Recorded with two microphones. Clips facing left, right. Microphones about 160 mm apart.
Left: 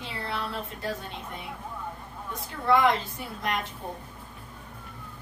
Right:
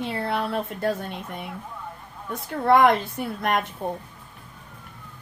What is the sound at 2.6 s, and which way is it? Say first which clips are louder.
Speech: right 5 dB; 60° right (ahead or behind).